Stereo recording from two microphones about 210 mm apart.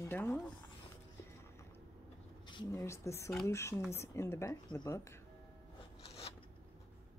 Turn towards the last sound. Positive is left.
turn(degrees=30)  # may be behind; listen again after turning